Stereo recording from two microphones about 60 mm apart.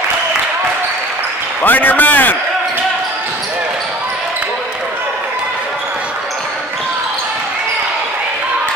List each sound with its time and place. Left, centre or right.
1.6 s a man's voice: left